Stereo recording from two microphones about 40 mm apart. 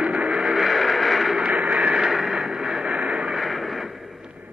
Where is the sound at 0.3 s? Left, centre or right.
Centre.